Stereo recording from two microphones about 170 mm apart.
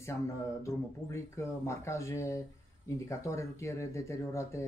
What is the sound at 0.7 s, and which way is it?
Speech, 15° left (ahead or behind).